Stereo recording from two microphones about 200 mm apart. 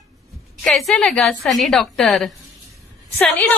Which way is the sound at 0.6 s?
Centre (ahead or behind).